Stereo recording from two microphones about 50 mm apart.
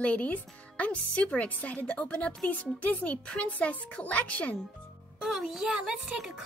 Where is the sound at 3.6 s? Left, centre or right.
Left.